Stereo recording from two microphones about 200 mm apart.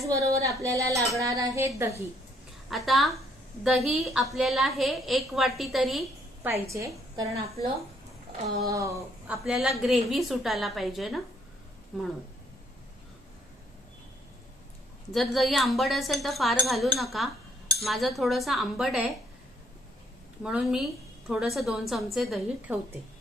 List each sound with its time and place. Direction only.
0.0 s a woman's voice: 15° right (ahead or behind)
2.7 s a woman's voice: centre (ahead or behind)
6.5 s a woman's voice: 15° right (ahead or behind)
8.6 s a woman's voice: 15° right (ahead or behind)
9.4 s a woman's voice: centre (ahead or behind)
15.1 s a woman's voice: centre (ahead or behind)
20.4 s a woman's voice: 5° right (ahead or behind)